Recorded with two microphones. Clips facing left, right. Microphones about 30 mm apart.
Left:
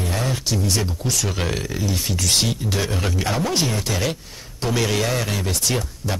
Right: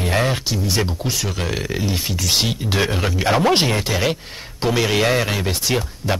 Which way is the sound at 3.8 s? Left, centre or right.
Right.